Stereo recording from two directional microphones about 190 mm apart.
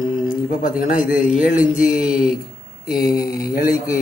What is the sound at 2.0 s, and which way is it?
Speech, 5° right (ahead or behind).